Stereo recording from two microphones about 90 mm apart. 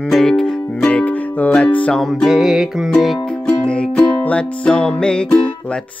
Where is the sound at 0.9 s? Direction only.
15° left (ahead or behind).